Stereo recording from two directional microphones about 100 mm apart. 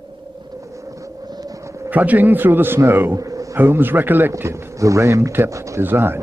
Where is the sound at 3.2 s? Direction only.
35° right (ahead or behind).